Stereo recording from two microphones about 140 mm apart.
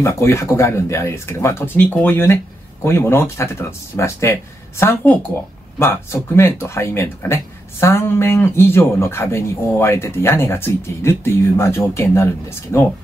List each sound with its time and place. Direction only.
0.0 s speech: 20° left (ahead or behind)